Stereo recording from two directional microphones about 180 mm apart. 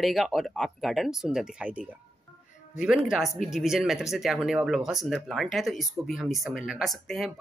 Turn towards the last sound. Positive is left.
turn(degrees=0)  # may be behind; listen again after turning